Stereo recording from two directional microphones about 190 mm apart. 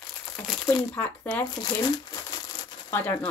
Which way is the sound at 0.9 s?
5° left (ahead or behind).